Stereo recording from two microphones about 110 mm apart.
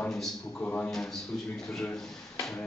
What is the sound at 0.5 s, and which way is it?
Speech, 15° left (ahead or behind).